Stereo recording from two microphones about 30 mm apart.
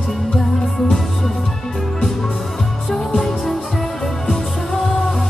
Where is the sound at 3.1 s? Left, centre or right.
Left.